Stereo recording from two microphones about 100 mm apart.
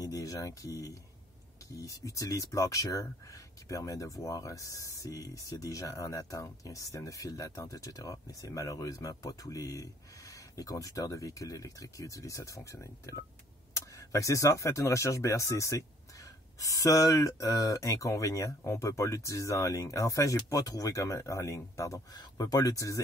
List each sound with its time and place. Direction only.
0.0 s speech: 35° left (ahead or behind)